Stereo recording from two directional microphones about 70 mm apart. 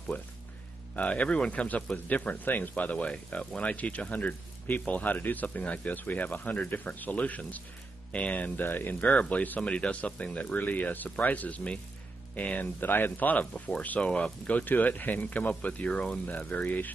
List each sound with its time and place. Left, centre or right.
0.1 s a man's voice: left
13.5 s a man's voice: centre